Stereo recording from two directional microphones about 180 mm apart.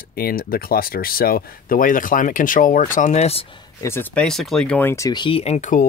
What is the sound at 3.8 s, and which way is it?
Speech, 10° left (ahead or behind).